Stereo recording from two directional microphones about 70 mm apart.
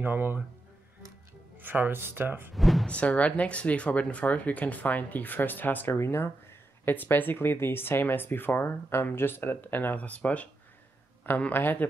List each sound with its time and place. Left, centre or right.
0.0 s speech: right
1.6 s speech: right
2.5 s speech: centre
2.9 s speech: centre